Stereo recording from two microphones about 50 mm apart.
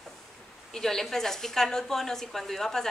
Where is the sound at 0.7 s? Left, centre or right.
Centre.